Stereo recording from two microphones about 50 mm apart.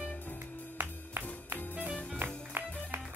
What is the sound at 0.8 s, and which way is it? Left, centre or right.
Music, right.